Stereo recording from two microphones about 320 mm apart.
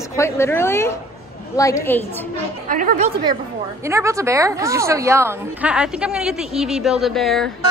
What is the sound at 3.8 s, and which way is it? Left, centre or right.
A woman's voice, centre.